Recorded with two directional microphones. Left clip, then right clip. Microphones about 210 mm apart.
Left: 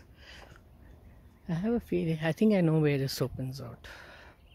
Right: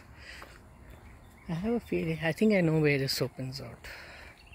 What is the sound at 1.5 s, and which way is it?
Speech, 35° left (ahead or behind).